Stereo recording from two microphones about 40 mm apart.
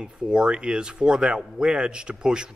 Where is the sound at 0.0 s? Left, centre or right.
Right.